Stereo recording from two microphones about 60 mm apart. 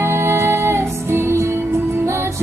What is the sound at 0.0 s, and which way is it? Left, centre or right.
Music, right.